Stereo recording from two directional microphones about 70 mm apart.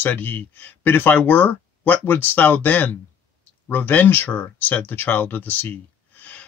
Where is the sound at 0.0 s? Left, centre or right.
Left.